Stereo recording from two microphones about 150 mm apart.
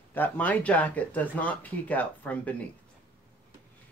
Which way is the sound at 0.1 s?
10° left (ahead or behind).